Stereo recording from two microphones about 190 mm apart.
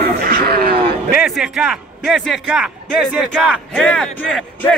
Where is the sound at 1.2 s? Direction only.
5° right (ahead or behind).